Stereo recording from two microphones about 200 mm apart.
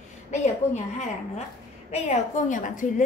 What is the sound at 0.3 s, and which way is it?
A woman's voice, 35° left (ahead or behind).